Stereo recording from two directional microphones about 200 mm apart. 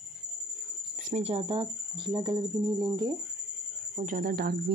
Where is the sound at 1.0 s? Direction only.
35° right (ahead or behind).